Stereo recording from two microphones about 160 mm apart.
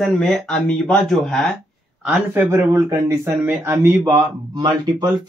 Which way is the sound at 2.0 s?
10° right (ahead or behind).